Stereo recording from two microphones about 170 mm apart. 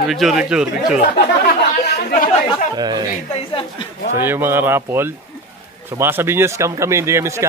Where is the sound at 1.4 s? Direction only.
75° left (ahead or behind).